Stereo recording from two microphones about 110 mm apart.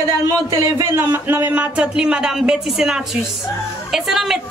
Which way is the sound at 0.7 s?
25° right (ahead or behind).